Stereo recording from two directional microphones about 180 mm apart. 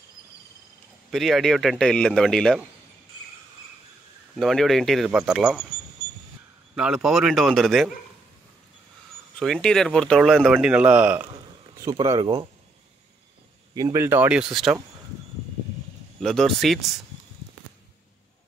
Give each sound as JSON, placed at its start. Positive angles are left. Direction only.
{"t": 1.1, "sound": "speech", "side_deg": 0}
{"t": 4.4, "sound": "speech", "side_deg": 0}
{"t": 6.7, "sound": "speech", "side_deg": -5}
{"t": 9.4, "sound": "speech", "side_deg": 0}
{"t": 11.7, "sound": "speech", "side_deg": -20}
{"t": 13.7, "sound": "speech", "side_deg": -15}
{"t": 16.2, "sound": "speech", "side_deg": 0}